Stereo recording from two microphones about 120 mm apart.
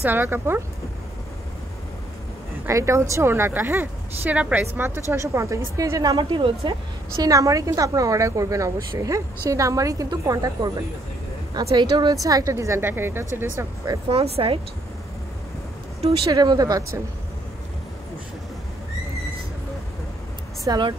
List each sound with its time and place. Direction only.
0.0 s a woman's voice: 15° right (ahead or behind)
2.6 s a woman's voice: 25° right (ahead or behind); by 6.8 s 45° right (ahead or behind)
7.2 s a woman's voice: 30° right (ahead or behind)
11.7 s a woman's voice: 40° right (ahead or behind); by 13.3 s 20° right (ahead or behind)
14.0 s speech: 55° right (ahead or behind)
16.1 s speech: 35° right (ahead or behind)
20.6 s speech: 35° right (ahead or behind)